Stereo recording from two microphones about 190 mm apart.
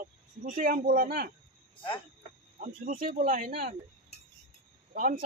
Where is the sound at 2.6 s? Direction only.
50° right (ahead or behind).